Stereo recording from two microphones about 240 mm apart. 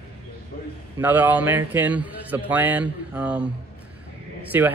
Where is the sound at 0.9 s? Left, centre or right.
Centre.